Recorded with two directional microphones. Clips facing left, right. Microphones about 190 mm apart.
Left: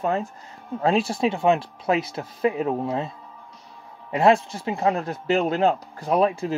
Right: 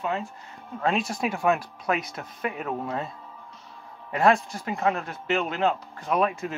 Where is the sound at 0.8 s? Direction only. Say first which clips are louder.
Left 5 dB; 30° left (ahead or behind).